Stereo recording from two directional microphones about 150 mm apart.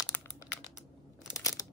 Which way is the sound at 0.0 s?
15° left (ahead or behind).